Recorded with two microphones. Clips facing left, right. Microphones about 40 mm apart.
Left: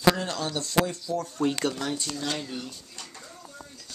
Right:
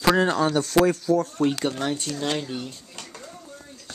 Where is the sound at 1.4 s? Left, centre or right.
Right.